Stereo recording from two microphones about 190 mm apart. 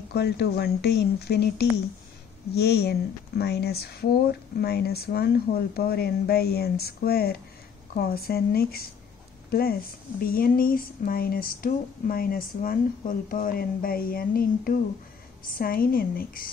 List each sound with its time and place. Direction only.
0.1 s speech: 60° left (ahead or behind)